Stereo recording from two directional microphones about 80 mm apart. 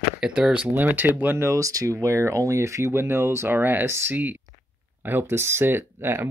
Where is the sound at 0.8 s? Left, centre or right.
Right.